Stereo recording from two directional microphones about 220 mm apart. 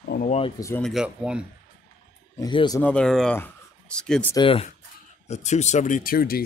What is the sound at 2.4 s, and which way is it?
Speech, 20° left (ahead or behind).